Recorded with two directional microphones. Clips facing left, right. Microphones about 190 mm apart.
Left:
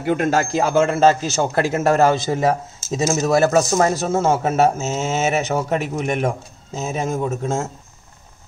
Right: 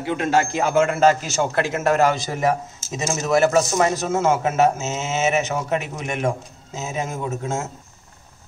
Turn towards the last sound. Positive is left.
turn(degrees=30)  # may be behind; listen again after turning